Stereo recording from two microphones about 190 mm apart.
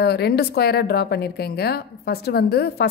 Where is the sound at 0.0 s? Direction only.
60° left (ahead or behind).